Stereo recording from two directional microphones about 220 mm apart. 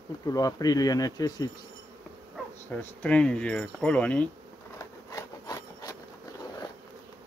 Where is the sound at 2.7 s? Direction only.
10° left (ahead or behind).